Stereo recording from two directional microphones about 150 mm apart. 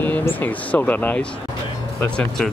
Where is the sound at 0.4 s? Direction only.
10° left (ahead or behind).